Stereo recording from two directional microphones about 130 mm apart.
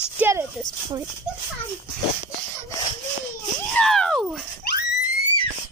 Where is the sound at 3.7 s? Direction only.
5° left (ahead or behind).